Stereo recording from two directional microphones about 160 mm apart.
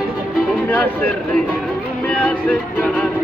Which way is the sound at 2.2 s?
10° left (ahead or behind).